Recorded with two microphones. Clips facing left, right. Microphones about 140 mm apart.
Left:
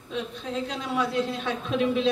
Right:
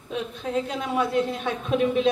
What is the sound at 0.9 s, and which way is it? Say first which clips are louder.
A man's voice: right 3 dB; 50° right (ahead or behind).